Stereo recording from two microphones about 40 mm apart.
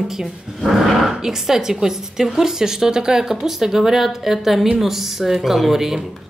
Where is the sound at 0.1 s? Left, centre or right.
Centre.